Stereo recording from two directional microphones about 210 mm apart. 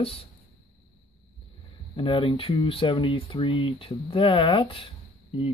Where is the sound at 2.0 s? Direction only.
25° left (ahead or behind).